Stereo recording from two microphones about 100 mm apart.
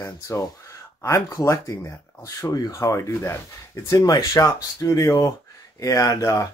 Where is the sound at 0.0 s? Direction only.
30° left (ahead or behind).